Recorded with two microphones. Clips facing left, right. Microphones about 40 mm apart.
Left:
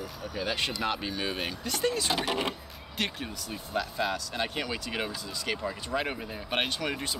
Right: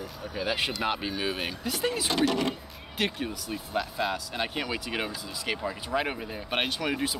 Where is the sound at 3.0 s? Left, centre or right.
Centre.